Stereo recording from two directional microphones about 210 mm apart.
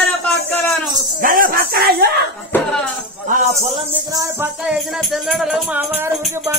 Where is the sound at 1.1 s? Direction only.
40° right (ahead or behind).